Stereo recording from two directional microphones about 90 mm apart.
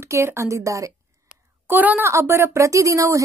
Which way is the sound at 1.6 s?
20° right (ahead or behind).